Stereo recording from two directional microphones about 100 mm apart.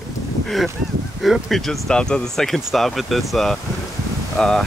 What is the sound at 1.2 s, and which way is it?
Speech, centre (ahead or behind).